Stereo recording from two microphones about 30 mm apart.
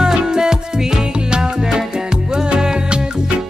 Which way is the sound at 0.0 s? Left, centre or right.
Right.